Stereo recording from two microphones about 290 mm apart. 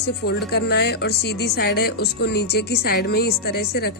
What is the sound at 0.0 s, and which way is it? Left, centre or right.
Speech, left.